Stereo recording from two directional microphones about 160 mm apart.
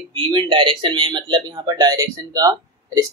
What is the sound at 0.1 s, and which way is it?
Speech, 35° right (ahead or behind).